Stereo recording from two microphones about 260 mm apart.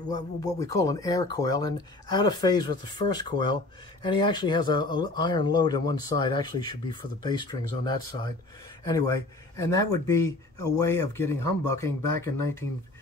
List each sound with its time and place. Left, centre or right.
0.1 s speech: centre